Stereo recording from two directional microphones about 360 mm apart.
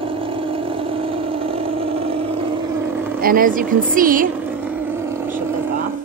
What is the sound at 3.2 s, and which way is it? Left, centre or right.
A woman's voice, right.